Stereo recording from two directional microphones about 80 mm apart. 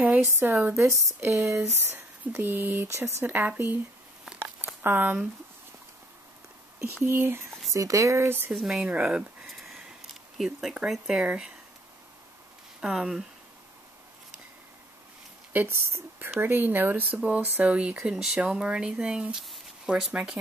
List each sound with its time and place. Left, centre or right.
0.0 s a woman's voice: right
0.7 s speech: right
4.8 s speech: right
7.1 s speech: right
7.7 s speech: right
8.5 s speech: centre
8.8 s a sound: centre
10.3 s speech: centre
12.8 s speech: centre
15.5 s speech: right; by 20.3 s centre